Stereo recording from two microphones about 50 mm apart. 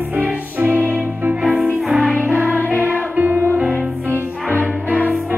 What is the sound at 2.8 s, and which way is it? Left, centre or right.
Music, right.